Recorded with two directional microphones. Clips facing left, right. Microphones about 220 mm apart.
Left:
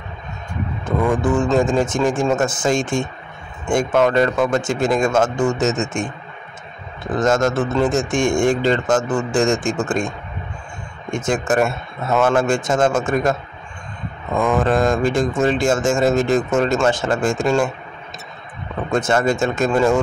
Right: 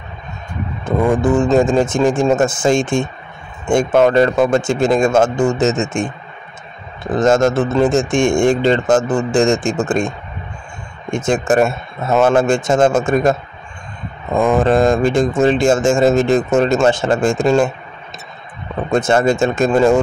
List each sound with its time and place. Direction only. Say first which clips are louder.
1.0 s a man's voice: right 4 dB; 25° right (ahead or behind)
7.2 s a man's voice: right 4 dB; 25° right (ahead or behind)
11.1 s a man's voice: right 4 dB; 25° right (ahead or behind)
18.9 s a man's voice: right 4 dB; 25° right (ahead or behind)